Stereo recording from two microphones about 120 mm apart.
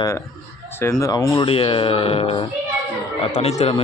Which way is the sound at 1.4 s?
45° left (ahead or behind).